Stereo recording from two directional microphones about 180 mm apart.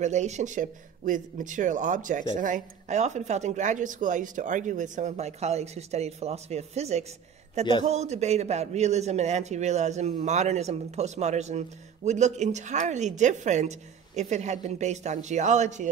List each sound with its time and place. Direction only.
0.0 s a man's voice: 40° right (ahead or behind)